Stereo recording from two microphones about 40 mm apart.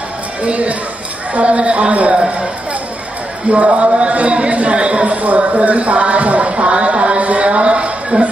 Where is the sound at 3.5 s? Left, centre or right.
Right.